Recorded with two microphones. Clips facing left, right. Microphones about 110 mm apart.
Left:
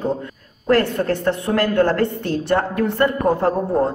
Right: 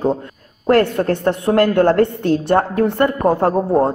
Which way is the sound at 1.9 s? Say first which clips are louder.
Right 5 dB; 50° right (ahead or behind).